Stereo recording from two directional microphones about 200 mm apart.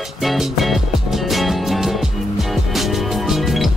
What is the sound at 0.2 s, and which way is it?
Music, centre (ahead or behind).